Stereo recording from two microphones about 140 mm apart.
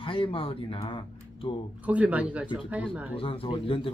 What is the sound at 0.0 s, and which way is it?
Speech, 40° left (ahead or behind).